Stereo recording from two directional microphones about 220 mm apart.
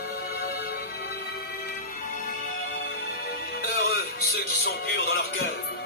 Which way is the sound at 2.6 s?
40° left (ahead or behind).